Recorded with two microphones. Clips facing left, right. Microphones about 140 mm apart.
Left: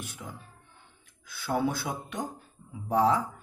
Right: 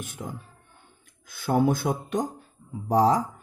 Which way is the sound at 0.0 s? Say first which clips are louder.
Right 5 dB; 50° right (ahead or behind).